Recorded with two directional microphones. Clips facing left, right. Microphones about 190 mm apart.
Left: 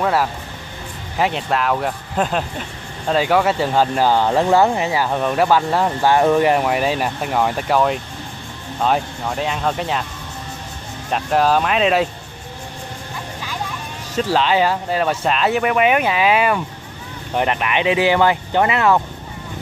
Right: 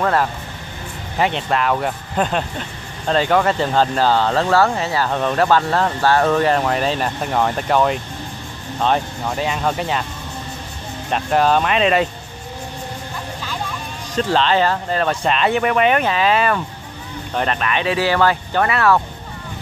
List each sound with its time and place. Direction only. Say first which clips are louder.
0.0 s speech: even; 5° left (ahead or behind)
11.1 s speech: even; centre (ahead or behind)
14.1 s speech: even; 10° left (ahead or behind)